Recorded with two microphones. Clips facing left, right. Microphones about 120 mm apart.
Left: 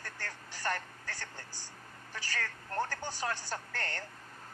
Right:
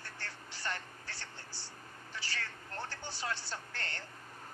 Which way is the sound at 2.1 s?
45° left (ahead or behind).